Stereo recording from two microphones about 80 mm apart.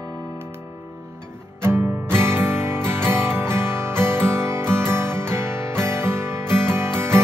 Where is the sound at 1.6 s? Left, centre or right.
Right.